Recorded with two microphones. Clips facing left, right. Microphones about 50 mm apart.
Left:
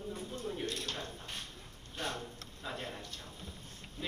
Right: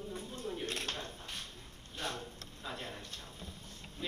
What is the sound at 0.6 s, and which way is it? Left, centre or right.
Speech, right.